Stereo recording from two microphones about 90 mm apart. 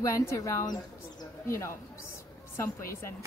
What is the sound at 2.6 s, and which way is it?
Speech, 30° left (ahead or behind).